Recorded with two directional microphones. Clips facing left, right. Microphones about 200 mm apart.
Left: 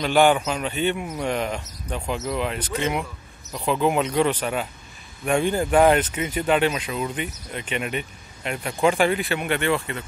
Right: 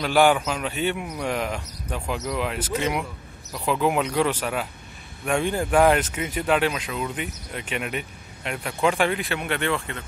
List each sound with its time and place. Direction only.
0.0 s a man's voice: 5° right (ahead or behind)